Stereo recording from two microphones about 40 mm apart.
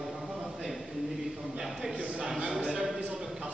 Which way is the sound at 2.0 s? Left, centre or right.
Right.